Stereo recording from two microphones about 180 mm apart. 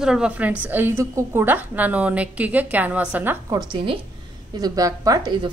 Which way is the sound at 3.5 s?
25° right (ahead or behind).